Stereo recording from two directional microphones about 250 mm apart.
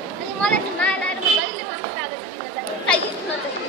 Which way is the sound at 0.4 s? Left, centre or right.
Centre.